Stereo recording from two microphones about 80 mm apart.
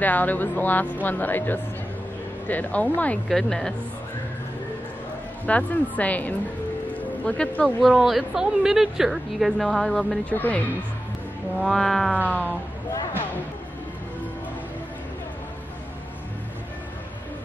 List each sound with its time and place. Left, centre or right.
0.0 s speech: left
3.3 s a woman's voice: centre
5.5 s speech: centre
6.9 s music: centre
7.9 s a woman's voice: centre
10.3 s speech: left
11.6 s a woman's voice: centre